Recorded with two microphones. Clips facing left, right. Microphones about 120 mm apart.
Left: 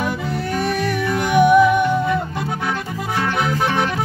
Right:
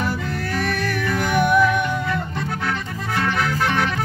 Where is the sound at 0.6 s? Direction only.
10° left (ahead or behind).